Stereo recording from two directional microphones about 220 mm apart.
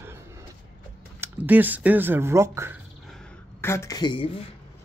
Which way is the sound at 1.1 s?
10° right (ahead or behind).